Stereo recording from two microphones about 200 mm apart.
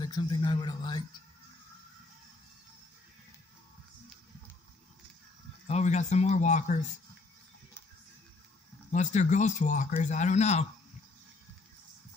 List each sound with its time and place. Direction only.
0.0 s a man's voice: 20° left (ahead or behind)
5.7 s speech: 35° left (ahead or behind)
8.9 s speech: 35° left (ahead or behind)